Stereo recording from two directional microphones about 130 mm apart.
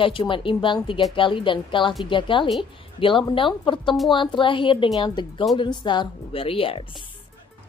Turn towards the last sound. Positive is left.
turn(degrees=45)  # may be behind; listen again after turning